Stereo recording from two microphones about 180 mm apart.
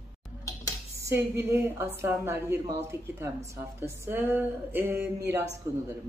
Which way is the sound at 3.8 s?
10° right (ahead or behind).